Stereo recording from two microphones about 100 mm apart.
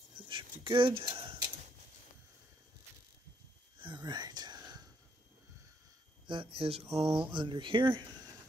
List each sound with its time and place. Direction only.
0.3 s a sound: 55° right (ahead or behind)
3.8 s whispering: 45° right (ahead or behind)
6.2 s speech: 55° right (ahead or behind)
7.2 s speech: 55° right (ahead or behind)